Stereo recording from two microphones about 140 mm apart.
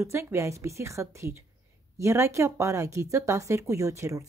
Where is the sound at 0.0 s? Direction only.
20° right (ahead or behind).